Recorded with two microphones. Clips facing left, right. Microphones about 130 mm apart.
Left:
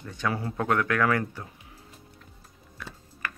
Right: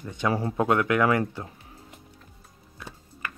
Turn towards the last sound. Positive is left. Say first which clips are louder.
# even
turn(degrees=-20)  # may be behind; listen again after turning